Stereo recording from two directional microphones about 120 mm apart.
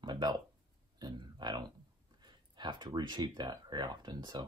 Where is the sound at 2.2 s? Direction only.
40° right (ahead or behind).